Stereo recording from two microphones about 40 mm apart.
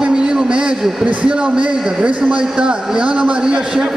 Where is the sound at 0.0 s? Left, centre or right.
Right.